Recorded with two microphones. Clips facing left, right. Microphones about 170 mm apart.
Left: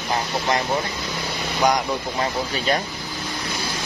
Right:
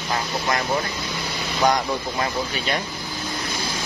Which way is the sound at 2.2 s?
35° left (ahead or behind).